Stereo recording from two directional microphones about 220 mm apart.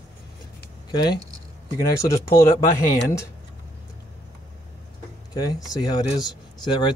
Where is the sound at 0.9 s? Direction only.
20° left (ahead or behind).